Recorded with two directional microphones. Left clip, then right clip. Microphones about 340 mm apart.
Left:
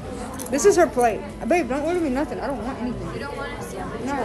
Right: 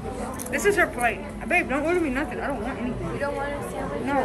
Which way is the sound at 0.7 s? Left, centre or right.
Centre.